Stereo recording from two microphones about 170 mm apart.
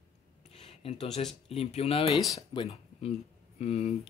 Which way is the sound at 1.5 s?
40° left (ahead or behind).